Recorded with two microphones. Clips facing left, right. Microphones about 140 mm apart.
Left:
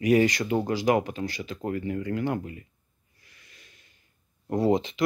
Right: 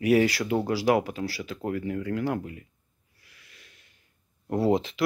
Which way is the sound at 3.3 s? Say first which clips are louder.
Even; centre (ahead or behind).